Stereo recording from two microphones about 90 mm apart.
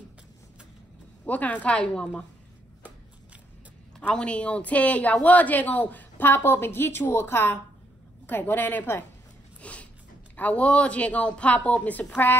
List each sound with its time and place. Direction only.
1.2 s speech: 15° left (ahead or behind)
4.1 s a woman's voice: 10° left (ahead or behind)
9.6 s a sound: 15° left (ahead or behind)
10.3 s speech: 15° left (ahead or behind)